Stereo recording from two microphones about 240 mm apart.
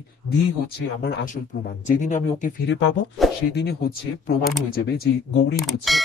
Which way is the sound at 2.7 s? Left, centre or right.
Left.